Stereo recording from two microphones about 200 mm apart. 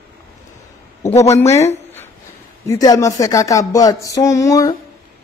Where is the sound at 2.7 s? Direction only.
15° left (ahead or behind).